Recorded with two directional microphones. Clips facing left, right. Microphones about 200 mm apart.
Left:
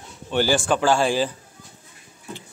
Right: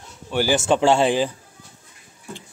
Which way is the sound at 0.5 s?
25° right (ahead or behind).